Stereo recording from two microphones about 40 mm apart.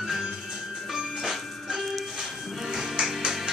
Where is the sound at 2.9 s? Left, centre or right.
Centre.